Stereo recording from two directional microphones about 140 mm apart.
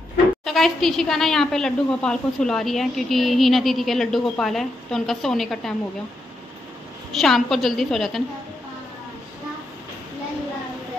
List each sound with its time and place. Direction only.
0.5 s a woman's voice: centre (ahead or behind)
7.1 s a woman's voice: centre (ahead or behind)